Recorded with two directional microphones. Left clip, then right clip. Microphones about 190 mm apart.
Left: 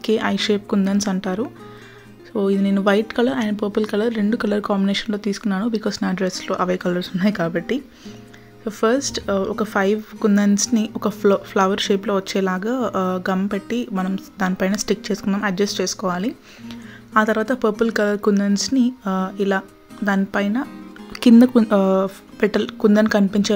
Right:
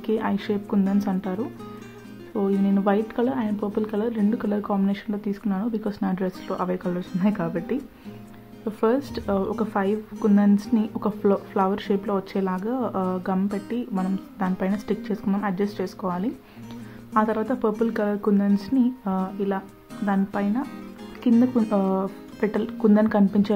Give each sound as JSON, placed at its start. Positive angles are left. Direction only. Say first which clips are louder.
{"t": 0.0, "sound": "speech", "louder": "left 6 dB", "side_deg": 25}
{"t": 21.1, "sound": "music", "louder": "left 8 dB", "side_deg": 35}
{"t": 21.6, "sound": "speech", "louder": "left 7 dB", "side_deg": 25}